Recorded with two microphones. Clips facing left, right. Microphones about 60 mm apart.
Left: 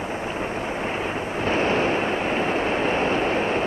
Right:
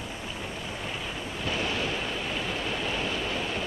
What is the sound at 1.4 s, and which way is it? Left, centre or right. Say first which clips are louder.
Waves: left 9 dB; left.